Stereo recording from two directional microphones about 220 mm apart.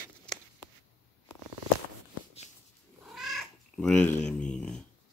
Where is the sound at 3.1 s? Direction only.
Centre (ahead or behind).